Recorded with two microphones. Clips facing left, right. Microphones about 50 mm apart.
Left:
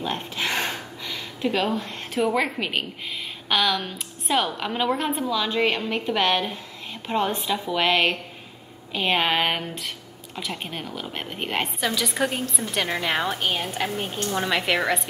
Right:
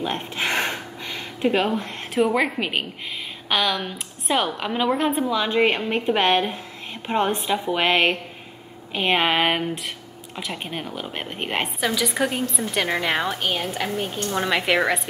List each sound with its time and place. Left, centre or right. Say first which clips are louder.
0.0 s a sound: right 2 dB; centre
2.1 s a woman's voice: right 3 dB; centre
14.3 s a woman's voice: right 2 dB; centre